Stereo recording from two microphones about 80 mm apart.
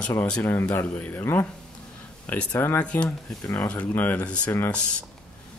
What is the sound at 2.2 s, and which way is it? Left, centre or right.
Speech, left.